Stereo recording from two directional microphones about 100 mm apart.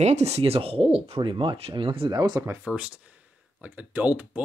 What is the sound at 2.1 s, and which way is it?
Speech, 40° right (ahead or behind).